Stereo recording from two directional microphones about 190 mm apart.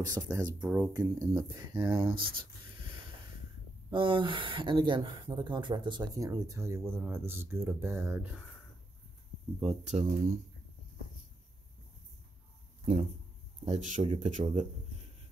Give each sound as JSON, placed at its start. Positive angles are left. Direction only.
{"t": 0.0, "sound": "speech", "side_deg": -20}
{"t": 0.6, "sound": "speech", "side_deg": -10}
{"t": 0.9, "sound": "speech", "side_deg": -20}
{"t": 3.9, "sound": "speech", "side_deg": -25}
{"t": 9.6, "sound": "speech", "side_deg": -30}
{"t": 13.7, "sound": "speech", "side_deg": -40}